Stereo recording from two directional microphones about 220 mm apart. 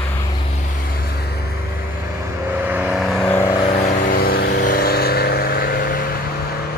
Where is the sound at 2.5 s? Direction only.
5° right (ahead or behind); by 6.2 s 40° left (ahead or behind).